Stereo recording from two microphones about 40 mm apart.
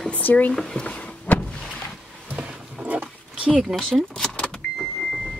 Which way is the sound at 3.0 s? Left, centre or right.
Right.